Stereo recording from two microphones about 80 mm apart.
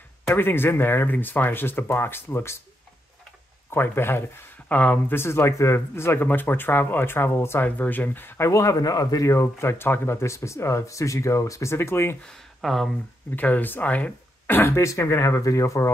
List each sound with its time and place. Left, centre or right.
0.3 s speech: left
3.7 s speech: left
7.6 s speech: left
8.5 s speech: left
9.3 s speech: left
12.3 s speech: centre
13.4 s speech: left